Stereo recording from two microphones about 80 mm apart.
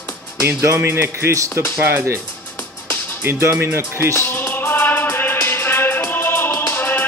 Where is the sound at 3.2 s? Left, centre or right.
Right.